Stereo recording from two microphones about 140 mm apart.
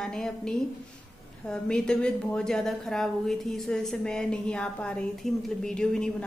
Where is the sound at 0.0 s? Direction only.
5° left (ahead or behind).